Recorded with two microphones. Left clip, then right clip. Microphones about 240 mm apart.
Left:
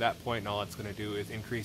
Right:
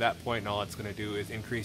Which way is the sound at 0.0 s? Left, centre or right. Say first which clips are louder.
Right 2 dB; centre.